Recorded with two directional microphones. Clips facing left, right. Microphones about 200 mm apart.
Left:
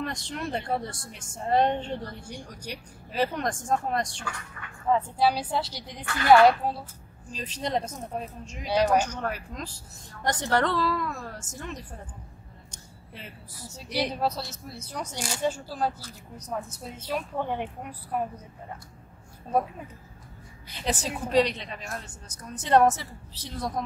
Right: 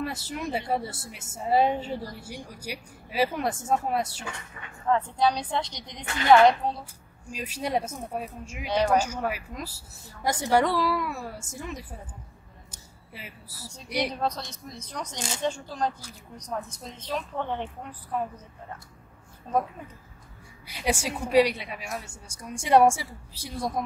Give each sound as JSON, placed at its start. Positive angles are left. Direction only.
{"t": 0.0, "sound": "a woman's voice", "side_deg": -5}
{"t": 4.2, "sound": "speech", "side_deg": -25}
{"t": 4.8, "sound": "a woman's voice", "side_deg": 5}
{"t": 6.0, "sound": "speech", "side_deg": -20}
{"t": 6.3, "sound": "a woman's voice", "side_deg": 5}
{"t": 7.2, "sound": "a woman's voice", "side_deg": -10}
{"t": 8.6, "sound": "a woman's voice", "side_deg": 10}
{"t": 8.9, "sound": "a woman's voice", "side_deg": -10}
{"t": 12.7, "sound": "a sound", "side_deg": -5}
{"t": 14.1, "sound": "a woman's voice", "side_deg": 5}
{"t": 20.6, "sound": "a woman's voice", "side_deg": -10}